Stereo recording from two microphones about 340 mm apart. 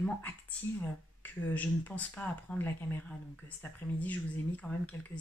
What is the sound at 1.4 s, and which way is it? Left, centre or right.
Speech, centre.